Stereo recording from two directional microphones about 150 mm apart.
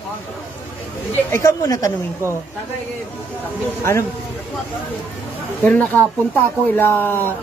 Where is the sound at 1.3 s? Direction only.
20° left (ahead or behind).